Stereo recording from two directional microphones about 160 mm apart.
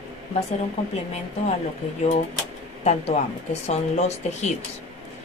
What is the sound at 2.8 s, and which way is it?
Speech, 45° left (ahead or behind).